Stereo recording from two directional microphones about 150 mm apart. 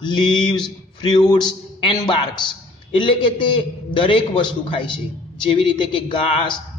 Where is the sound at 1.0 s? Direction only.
30° left (ahead or behind).